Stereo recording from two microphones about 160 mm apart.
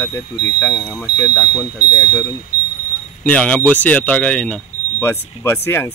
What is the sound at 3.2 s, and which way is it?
Speech, 10° left (ahead or behind).